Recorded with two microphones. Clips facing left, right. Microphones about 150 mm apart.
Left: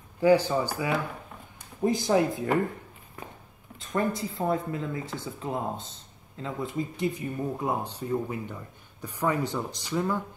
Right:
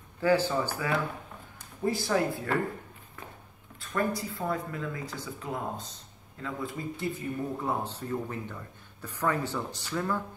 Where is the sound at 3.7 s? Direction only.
20° left (ahead or behind).